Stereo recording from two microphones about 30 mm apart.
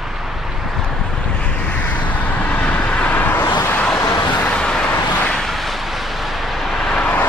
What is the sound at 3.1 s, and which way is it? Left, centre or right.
Vehicle, left.